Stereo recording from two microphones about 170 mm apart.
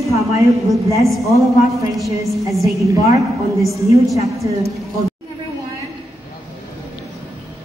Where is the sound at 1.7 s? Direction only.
Centre (ahead or behind).